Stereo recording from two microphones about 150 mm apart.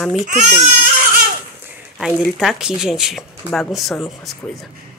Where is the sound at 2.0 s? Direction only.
Centre (ahead or behind).